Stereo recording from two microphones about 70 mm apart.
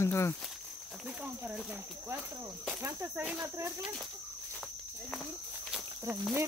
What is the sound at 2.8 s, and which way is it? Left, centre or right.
Speech, right.